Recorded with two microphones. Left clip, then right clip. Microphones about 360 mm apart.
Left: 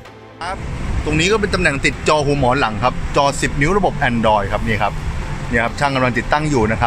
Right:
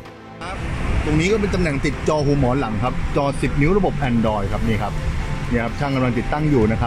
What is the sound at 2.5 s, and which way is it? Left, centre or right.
Speech, left.